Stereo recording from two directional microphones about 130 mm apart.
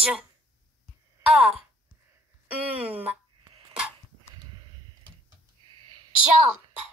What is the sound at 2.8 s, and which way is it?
Speech, 10° right (ahead or behind).